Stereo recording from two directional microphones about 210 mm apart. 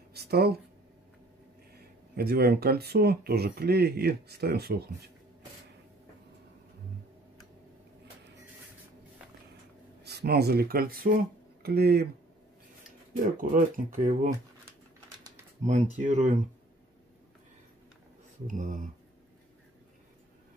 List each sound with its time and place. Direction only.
0.1 s speech: 50° right (ahead or behind)
2.1 s speech: 50° right (ahead or behind)
10.0 s speech: 50° right (ahead or behind)
13.1 s speech: 40° right (ahead or behind)
15.6 s speech: 35° right (ahead or behind)
18.5 s speech: 40° right (ahead or behind)